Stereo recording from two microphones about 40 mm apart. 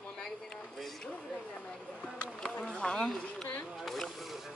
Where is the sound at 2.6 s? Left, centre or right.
Centre.